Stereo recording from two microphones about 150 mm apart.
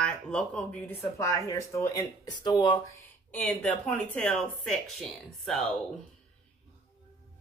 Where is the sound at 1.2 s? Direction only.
20° left (ahead or behind).